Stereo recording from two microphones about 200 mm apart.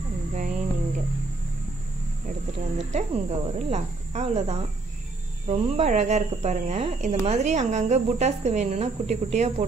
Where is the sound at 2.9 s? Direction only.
35° right (ahead or behind).